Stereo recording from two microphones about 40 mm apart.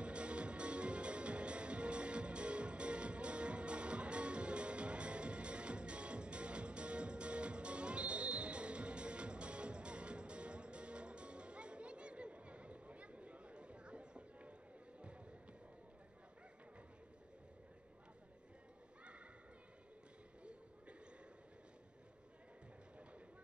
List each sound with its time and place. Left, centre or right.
0.0 s music: right